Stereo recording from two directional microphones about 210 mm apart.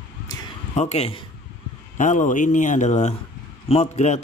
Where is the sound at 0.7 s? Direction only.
30° left (ahead or behind).